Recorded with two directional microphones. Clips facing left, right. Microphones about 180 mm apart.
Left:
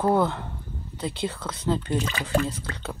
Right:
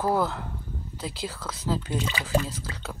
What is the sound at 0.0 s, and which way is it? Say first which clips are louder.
Speech: left 3 dB; centre (ahead or behind).